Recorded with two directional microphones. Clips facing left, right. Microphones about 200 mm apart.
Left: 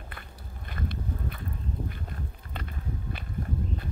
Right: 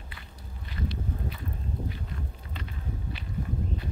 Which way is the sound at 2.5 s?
50° left (ahead or behind).